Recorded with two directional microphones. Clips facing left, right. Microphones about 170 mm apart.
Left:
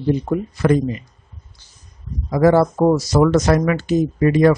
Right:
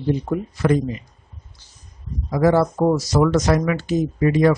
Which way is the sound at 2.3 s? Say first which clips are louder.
Left 3 dB; 50° left (ahead or behind).